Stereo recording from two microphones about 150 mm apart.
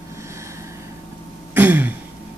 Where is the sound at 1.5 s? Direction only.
10° right (ahead or behind).